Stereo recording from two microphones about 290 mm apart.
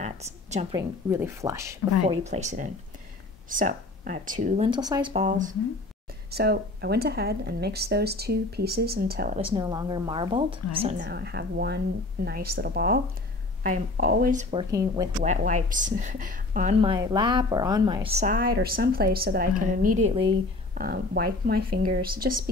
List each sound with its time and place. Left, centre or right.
0.0 s speech: right
2.2 s a woman's voice: right
6.3 s speech: right
9.4 s a woman's voice: centre
15.2 s a woman's voice: right
20.7 s a woman's voice: right